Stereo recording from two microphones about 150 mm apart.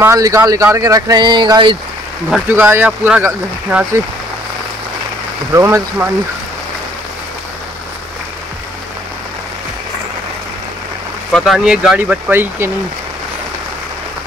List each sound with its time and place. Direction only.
0.0 s speech: 20° right (ahead or behind)
2.4 s speech: 15° right (ahead or behind)
5.5 s speech: 15° right (ahead or behind)
11.3 s speech: centre (ahead or behind)